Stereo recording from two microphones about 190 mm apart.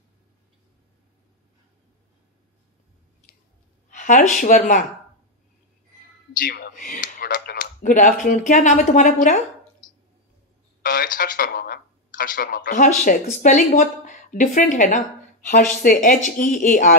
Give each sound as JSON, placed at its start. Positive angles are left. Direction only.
{"t": 3.9, "sound": "speech", "side_deg": 40}
{"t": 6.4, "sound": "speech", "side_deg": 50}
{"t": 10.8, "sound": "speech", "side_deg": 50}